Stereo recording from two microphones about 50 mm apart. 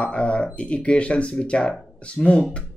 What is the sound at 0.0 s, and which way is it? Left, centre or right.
Speech, left.